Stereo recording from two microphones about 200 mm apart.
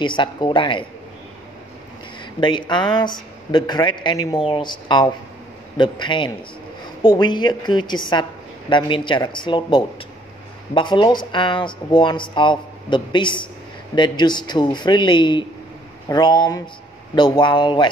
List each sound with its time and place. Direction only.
0.0 s a woman's voice: 25° left (ahead or behind)
2.4 s a woman's voice: 25° left (ahead or behind)